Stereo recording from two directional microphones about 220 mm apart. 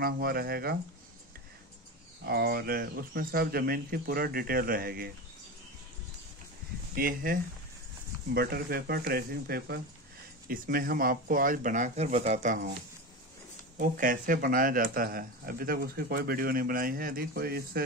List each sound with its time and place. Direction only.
0.0 s speech: 45° right (ahead or behind)
2.2 s speech: 45° right (ahead or behind)
7.0 s speech: 40° right (ahead or behind)
13.7 s speech: 40° right (ahead or behind)